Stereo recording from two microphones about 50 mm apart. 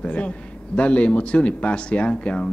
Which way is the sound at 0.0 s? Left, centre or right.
Left.